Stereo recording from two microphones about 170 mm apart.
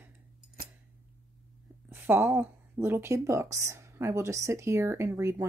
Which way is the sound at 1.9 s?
10° right (ahead or behind).